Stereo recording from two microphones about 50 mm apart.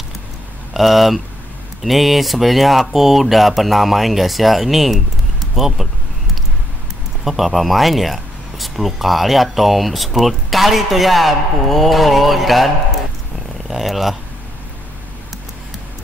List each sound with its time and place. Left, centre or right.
0.7 s speech: centre
7.2 s speech: centre
13.7 s speech: centre